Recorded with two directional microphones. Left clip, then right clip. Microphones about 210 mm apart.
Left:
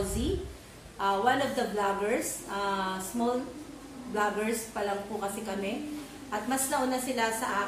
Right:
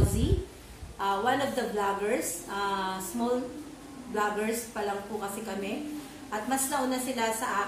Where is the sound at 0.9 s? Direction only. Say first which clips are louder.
Left 1 dB; centre (ahead or behind).